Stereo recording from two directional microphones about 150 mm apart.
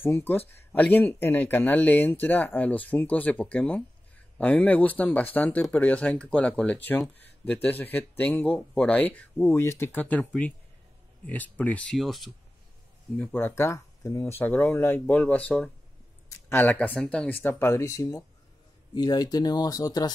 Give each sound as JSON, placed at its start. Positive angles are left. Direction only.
{"t": 0.0, "sound": "speech", "side_deg": 15}
{"t": 13.2, "sound": "speech", "side_deg": 15}